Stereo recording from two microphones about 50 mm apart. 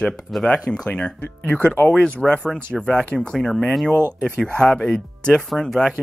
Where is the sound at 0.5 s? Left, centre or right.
Left.